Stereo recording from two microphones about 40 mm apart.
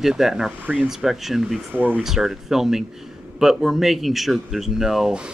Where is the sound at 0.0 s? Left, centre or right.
Centre.